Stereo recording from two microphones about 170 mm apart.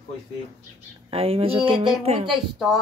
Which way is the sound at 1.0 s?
35° right (ahead or behind).